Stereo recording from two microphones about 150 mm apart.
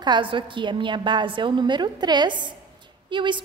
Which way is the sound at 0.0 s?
30° right (ahead or behind).